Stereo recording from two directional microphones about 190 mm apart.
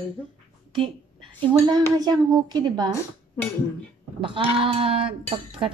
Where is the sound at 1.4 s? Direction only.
20° right (ahead or behind).